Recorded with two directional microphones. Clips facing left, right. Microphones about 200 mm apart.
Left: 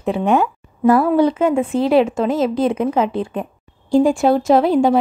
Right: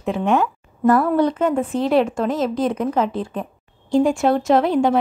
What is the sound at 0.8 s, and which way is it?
A woman's voice, 5° left (ahead or behind).